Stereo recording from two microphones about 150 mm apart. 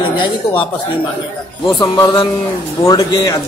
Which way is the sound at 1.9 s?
30° left (ahead or behind).